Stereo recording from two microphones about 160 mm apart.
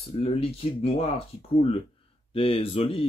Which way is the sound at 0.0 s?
40° left (ahead or behind).